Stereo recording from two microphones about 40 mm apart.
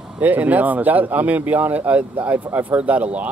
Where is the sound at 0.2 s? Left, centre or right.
Right.